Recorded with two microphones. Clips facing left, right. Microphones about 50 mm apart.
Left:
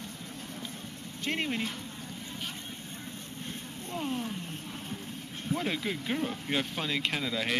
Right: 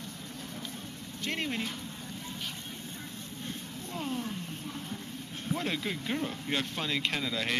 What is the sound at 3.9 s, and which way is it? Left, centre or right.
Speech, centre.